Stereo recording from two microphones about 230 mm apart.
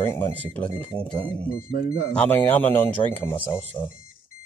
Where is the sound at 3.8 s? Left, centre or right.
Centre.